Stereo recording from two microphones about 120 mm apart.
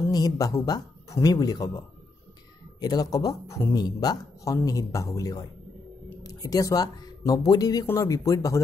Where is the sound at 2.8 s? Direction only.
35° left (ahead or behind).